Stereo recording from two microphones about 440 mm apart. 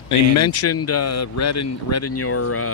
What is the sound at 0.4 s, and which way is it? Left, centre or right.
Speech, left.